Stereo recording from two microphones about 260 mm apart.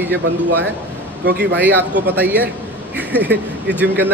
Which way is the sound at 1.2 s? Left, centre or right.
Right.